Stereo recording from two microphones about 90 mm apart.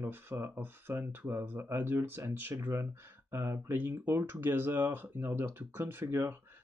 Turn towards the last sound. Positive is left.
turn(degrees=-25)  # may be behind; listen again after turning